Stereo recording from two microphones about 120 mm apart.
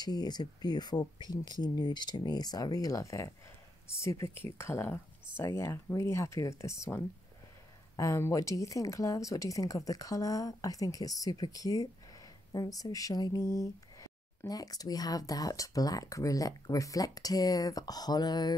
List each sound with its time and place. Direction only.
0.0 s speech: 35° left (ahead or behind)